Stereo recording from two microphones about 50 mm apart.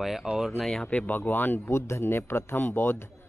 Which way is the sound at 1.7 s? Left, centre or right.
Left.